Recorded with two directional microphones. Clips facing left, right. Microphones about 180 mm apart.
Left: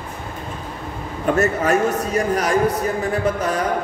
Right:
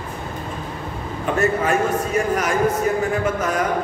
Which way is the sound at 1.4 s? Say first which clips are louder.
Even; 40° left (ahead or behind).